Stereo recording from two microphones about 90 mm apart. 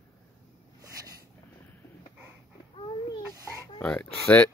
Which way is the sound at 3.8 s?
15° left (ahead or behind).